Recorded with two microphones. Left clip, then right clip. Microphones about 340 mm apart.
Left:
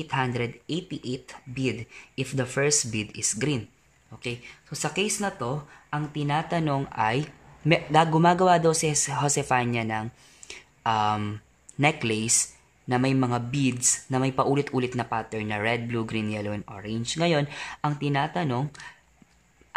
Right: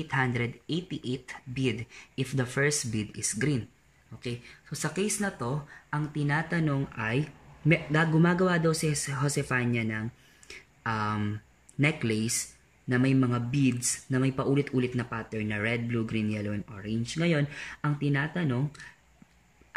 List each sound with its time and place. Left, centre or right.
0.0 s speech: centre